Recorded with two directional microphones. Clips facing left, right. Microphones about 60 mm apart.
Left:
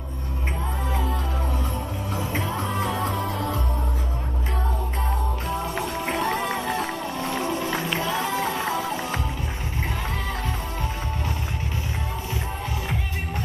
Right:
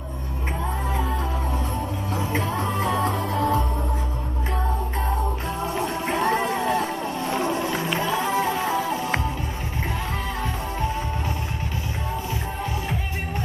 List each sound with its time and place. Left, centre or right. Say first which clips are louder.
2.1 s music: right 2 dB; right
5.7 s music: right 2 dB; right